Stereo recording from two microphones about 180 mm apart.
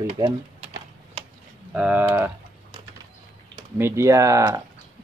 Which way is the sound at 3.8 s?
15° right (ahead or behind).